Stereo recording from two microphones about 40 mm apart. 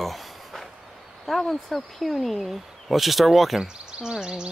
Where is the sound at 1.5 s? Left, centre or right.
Centre.